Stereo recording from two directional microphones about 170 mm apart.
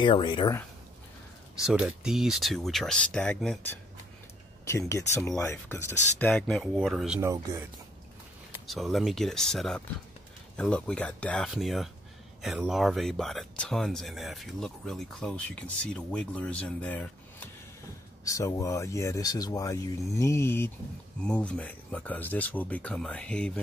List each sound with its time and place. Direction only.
0.0 s speech: 30° left (ahead or behind)
1.7 s speech: 5° right (ahead or behind)
4.6 s speech: 15° left (ahead or behind); by 7.2 s centre (ahead or behind)
7.2 s speech: 15° right (ahead or behind)
8.6 s speech: centre (ahead or behind)
18.2 s speech: 20° left (ahead or behind)